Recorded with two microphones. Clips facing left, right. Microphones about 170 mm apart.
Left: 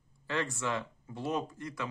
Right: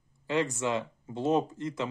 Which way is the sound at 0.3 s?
20° right (ahead or behind).